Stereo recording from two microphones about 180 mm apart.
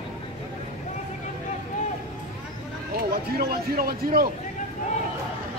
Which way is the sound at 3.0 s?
55° right (ahead or behind).